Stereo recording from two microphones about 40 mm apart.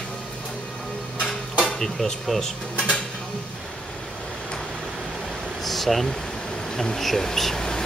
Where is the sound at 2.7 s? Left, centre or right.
Left.